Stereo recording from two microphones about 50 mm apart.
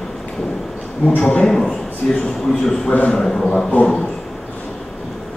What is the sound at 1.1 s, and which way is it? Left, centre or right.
Speech, left.